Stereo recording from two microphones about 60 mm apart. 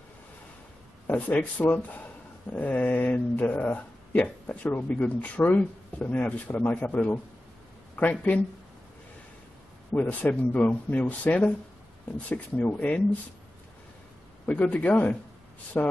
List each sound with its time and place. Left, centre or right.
1.0 s speech: left
9.9 s speech: left
14.4 s speech: left